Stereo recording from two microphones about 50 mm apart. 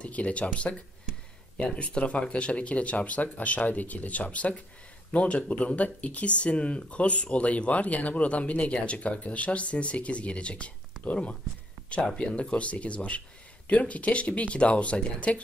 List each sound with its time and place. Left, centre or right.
0.0 s speech: left
12.2 s speech: left